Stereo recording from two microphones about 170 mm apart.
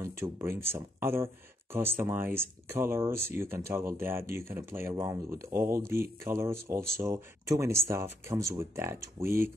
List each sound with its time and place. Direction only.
0.0 s speech: 15° right (ahead or behind)